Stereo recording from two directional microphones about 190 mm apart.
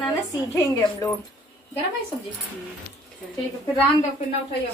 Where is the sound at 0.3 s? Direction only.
15° left (ahead or behind).